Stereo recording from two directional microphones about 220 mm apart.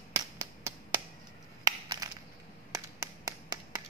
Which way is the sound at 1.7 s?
15° right (ahead or behind).